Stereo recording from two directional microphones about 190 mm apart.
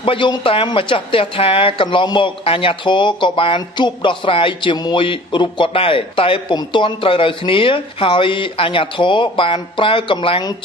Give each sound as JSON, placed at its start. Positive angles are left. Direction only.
{"t": 0.0, "sound": "speech", "side_deg": 25}